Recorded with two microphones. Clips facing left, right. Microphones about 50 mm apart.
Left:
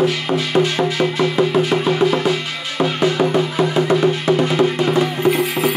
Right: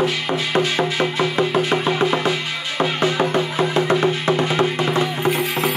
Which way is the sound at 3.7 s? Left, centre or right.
Right.